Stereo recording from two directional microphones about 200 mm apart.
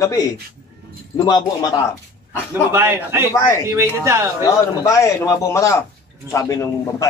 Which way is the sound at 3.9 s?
15° right (ahead or behind).